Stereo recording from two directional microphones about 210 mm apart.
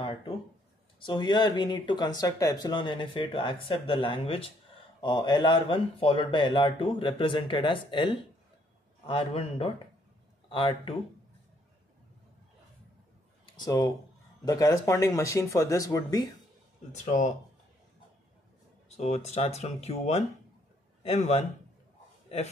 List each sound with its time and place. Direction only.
0.9 s speech: 25° left (ahead or behind)
13.6 s speech: 15° left (ahead or behind)
17.0 s speech: 35° left (ahead or behind)
18.9 s speech: 30° left (ahead or behind)